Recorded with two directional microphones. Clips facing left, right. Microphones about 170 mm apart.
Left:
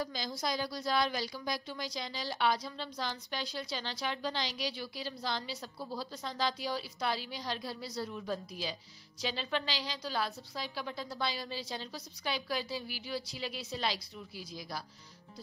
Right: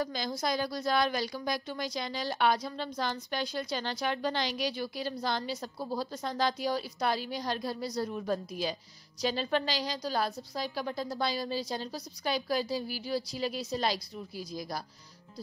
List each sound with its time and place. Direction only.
0.0 s a woman's voice: 55° right (ahead or behind)